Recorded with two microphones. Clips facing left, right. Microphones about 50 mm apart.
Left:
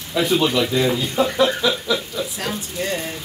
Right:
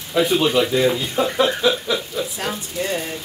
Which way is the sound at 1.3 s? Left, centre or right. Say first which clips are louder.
Right 2 dB; right.